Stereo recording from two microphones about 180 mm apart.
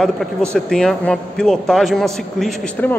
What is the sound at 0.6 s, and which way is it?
A man's voice, 5° left (ahead or behind).